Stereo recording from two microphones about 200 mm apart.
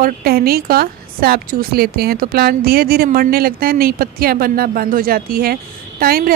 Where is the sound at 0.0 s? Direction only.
50° right (ahead or behind).